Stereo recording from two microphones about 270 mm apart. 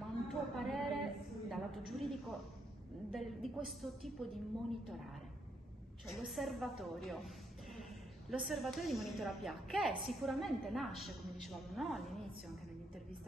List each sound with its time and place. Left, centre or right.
0.3 s music: centre
1.5 s a woman's voice: centre
6.0 s a woman's voice: centre